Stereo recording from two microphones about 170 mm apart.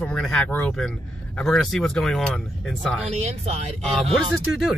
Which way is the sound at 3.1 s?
40° right (ahead or behind).